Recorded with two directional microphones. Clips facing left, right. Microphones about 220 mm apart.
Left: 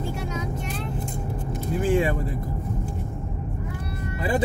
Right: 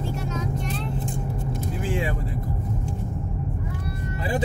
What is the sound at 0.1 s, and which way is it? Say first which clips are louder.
Vehicle: right 1 dB; 10° left (ahead or behind).